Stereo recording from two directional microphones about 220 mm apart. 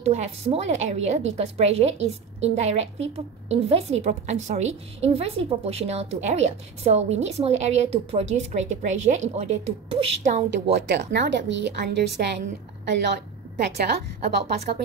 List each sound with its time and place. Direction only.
0.0 s a woman's voice: 30° right (ahead or behind)
10.7 s a woman's voice: 50° right (ahead or behind)